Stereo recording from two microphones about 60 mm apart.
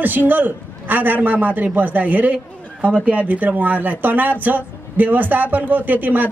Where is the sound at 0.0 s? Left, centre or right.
Right.